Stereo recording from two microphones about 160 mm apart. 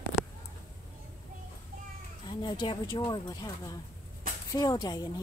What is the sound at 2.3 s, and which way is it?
Speech, 30° left (ahead or behind).